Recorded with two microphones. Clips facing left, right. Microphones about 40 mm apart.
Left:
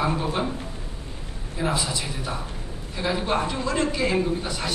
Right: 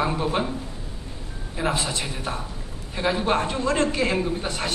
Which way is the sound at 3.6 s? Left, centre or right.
Right.